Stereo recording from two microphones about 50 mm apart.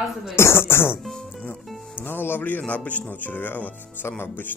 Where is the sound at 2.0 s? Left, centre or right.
Left.